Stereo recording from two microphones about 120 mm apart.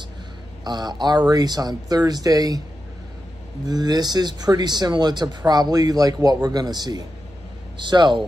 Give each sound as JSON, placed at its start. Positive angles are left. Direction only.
{"t": 0.7, "sound": "speech", "side_deg": -35}
{"t": 3.6, "sound": "speech", "side_deg": -35}